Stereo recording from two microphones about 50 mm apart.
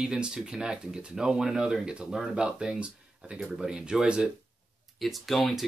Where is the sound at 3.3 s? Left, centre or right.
Centre.